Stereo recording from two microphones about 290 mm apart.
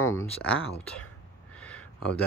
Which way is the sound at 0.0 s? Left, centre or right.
Centre.